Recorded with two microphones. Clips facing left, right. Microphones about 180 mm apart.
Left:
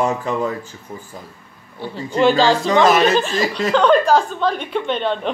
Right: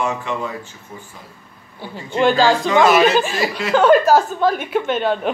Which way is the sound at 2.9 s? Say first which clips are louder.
Right 1 dB; 5° right (ahead or behind).